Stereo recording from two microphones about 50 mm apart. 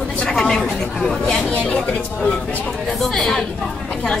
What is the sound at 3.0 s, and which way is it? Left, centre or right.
Speech, centre.